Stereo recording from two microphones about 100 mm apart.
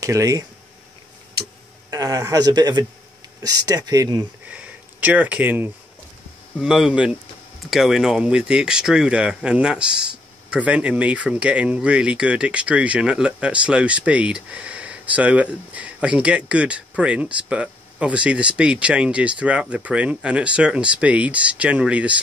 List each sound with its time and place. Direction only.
0.0 s a man's voice: 35° right (ahead or behind)
1.9 s a man's voice: 40° right (ahead or behind)
4.5 s speech: 15° right (ahead or behind)
6.6 s speech: 5° right (ahead or behind)